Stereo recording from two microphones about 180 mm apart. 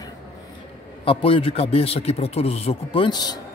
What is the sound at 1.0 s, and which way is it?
A man's voice, 30° left (ahead or behind).